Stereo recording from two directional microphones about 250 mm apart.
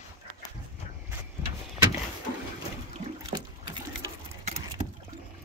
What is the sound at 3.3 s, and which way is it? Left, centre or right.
Boat, centre.